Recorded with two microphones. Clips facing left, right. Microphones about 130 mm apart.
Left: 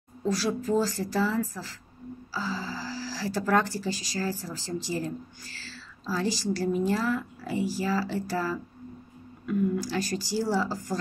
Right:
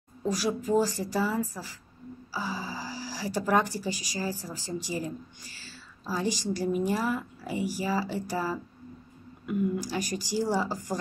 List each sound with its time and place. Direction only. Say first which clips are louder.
0.2 s speech: left 1 dB; 15° right (ahead or behind)